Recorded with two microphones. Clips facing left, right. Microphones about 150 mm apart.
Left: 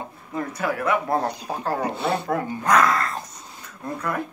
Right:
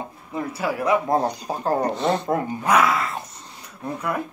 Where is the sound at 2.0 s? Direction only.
10° left (ahead or behind).